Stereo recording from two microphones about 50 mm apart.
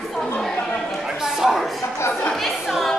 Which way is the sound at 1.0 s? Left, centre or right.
Centre.